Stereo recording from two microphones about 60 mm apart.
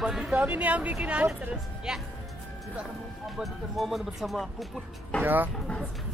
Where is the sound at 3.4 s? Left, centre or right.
Centre.